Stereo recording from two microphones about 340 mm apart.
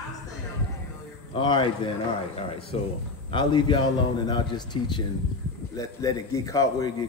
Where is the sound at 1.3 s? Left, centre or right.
Centre.